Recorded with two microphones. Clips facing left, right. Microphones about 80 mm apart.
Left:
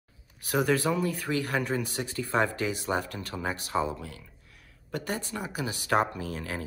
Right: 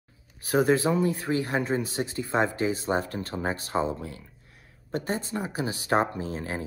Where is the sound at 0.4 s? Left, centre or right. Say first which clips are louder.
Right 4 dB; right.